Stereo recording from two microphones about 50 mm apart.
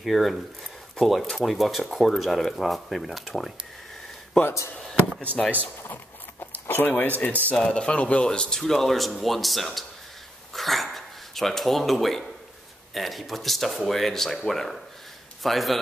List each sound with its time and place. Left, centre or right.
0.0 s speech: centre
5.2 s speech: left
6.7 s speech: left
7.5 s speech: centre
8.3 s speech: centre
10.5 s dog: centre
12.9 s speech: centre